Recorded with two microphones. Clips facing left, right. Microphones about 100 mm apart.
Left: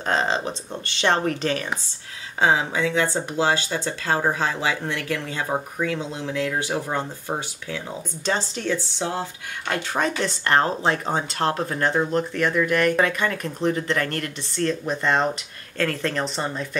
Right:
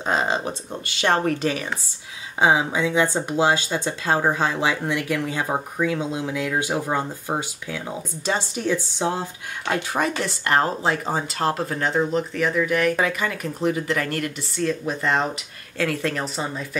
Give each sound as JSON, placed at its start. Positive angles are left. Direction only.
{"t": 0.0, "sound": "speech", "side_deg": -10}